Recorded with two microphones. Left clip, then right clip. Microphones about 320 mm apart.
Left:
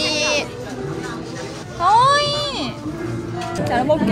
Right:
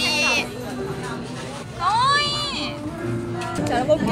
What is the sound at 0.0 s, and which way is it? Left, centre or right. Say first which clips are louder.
Sheep: left 1 dB; centre.